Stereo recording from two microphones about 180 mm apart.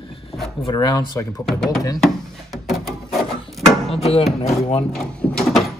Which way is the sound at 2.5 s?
Centre (ahead or behind).